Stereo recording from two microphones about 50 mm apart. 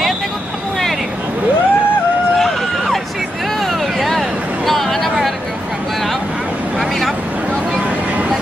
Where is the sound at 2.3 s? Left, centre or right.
Centre.